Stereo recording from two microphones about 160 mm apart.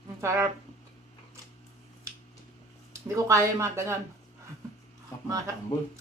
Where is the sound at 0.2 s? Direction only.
20° right (ahead or behind).